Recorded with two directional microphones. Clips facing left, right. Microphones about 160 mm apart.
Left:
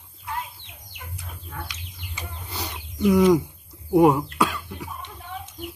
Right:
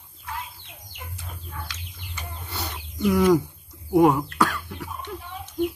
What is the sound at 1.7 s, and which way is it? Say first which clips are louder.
Bird: even; 15° left (ahead or behind).